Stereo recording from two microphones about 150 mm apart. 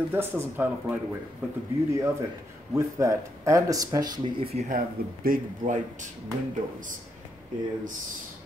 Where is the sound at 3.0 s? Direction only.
20° right (ahead or behind).